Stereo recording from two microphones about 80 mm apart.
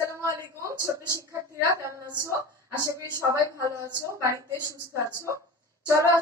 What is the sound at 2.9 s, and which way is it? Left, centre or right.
A woman's voice, right.